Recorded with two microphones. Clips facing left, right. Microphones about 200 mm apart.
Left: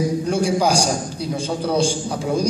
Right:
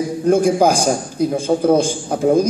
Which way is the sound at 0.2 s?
50° right (ahead or behind).